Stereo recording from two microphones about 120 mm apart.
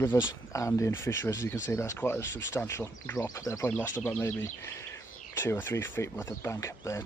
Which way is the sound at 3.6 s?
15° left (ahead or behind).